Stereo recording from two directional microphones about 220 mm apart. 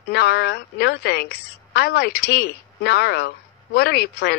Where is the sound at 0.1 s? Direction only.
45° left (ahead or behind).